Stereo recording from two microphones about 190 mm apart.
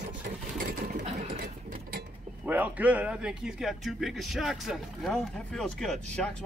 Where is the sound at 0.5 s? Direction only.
50° right (ahead or behind).